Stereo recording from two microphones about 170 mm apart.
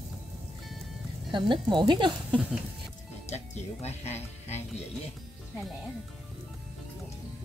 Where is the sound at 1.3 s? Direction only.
25° right (ahead or behind).